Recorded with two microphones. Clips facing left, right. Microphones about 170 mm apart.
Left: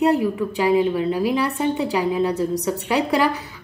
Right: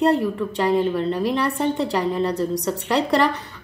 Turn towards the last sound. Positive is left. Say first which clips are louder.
# even
turn(degrees=5)  # may be behind; listen again after turning